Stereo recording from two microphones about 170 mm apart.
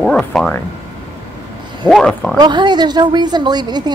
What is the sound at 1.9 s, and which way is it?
Speech, 5° left (ahead or behind).